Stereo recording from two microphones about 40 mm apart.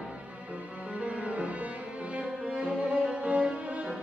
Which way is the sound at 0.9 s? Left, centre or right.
Right.